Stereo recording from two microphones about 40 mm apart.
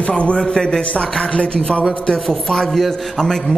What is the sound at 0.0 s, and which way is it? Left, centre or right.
Speech, left.